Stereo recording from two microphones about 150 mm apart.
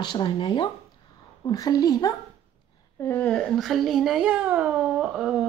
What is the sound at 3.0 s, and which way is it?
Speech, 10° left (ahead or behind).